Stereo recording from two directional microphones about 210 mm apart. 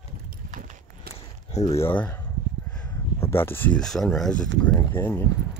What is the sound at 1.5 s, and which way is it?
Speech, 30° left (ahead or behind).